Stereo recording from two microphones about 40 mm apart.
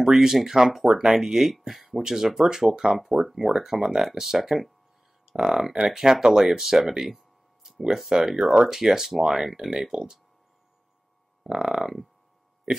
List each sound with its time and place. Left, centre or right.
0.0 s speech: centre
3.3 s speech: centre
5.2 s speech: centre
8.4 s speech: right
8.6 s speech: centre
11.4 s speech: right
11.7 s speech: centre